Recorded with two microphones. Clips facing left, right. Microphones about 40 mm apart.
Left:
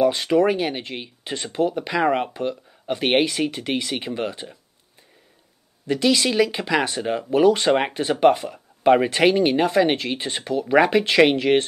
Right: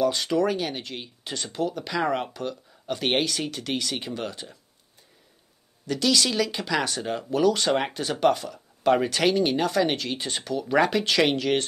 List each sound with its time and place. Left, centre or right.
0.0 s speech: left
5.9 s speech: left